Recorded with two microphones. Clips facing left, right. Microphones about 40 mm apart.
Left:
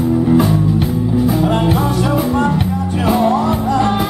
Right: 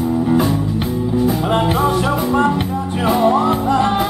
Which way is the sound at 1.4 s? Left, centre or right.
Centre.